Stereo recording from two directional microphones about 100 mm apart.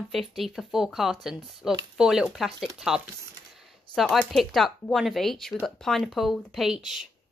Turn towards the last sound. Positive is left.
turn(degrees=-5)  # may be behind; listen again after turning